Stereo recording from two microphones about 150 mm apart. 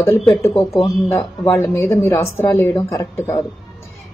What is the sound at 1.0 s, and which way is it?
Speech, 15° left (ahead or behind).